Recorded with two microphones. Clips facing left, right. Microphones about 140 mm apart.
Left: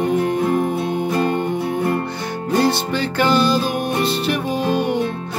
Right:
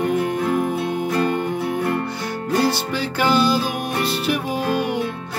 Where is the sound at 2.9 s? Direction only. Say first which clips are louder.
Left 2 dB; 5° right (ahead or behind).